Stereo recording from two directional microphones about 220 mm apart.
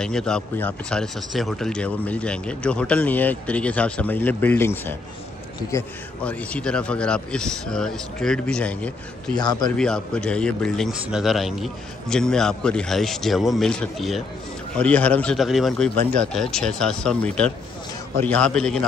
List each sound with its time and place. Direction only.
0.0 s speech: 5° left (ahead or behind)
9.4 s speech: 20° left (ahead or behind)
9.8 s speech: 5° left (ahead or behind)